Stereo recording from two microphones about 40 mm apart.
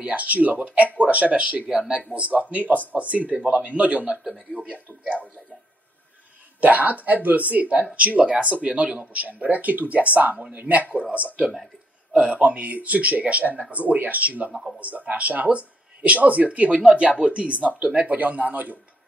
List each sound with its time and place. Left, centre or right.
0.0 s speech: right
1.7 s speech: right
2.1 s speech: right
6.6 s speech: right